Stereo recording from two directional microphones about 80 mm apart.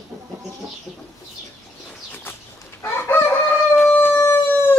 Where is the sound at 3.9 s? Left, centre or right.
Left.